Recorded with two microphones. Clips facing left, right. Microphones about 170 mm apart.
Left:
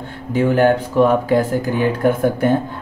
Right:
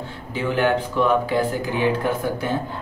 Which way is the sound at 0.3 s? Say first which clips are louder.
Left 7 dB; 45° left (ahead or behind).